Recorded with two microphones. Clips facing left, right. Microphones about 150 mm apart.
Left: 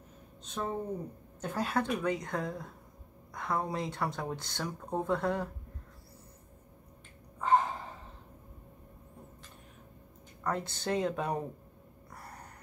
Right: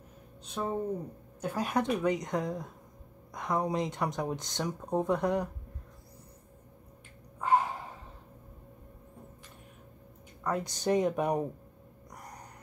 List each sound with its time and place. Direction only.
0.6 s speech: 10° right (ahead or behind)
7.3 s a sound: 10° right (ahead or behind)
10.4 s speech: 15° right (ahead or behind)